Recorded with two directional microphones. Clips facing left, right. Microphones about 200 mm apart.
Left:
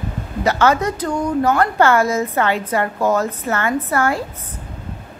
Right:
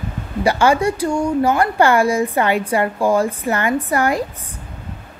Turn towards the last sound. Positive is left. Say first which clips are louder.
# right 1 dB
turn(degrees=-15)  # may be behind; listen again after turning